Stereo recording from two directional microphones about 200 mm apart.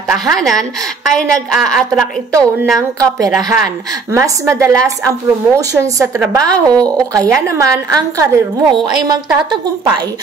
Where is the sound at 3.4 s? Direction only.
15° right (ahead or behind).